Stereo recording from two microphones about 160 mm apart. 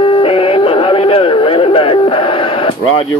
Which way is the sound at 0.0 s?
35° left (ahead or behind).